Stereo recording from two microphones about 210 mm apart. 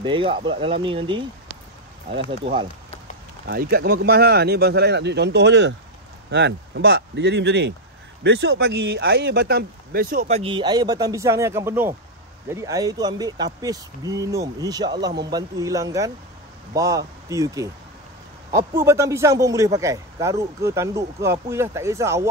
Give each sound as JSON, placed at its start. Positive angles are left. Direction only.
{"t": 0.0, "sound": "speech", "side_deg": -25}
{"t": 2.4, "sound": "speech", "side_deg": -25}
{"t": 3.4, "sound": "speech", "side_deg": -45}
{"t": 10.2, "sound": "a man's voice", "side_deg": -30}
{"t": 18.8, "sound": "a man's voice", "side_deg": -15}